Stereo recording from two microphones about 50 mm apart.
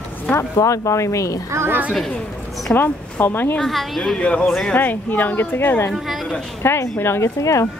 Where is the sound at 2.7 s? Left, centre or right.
Left.